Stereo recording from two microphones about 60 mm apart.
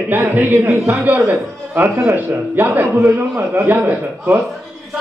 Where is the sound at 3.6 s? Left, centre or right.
Right.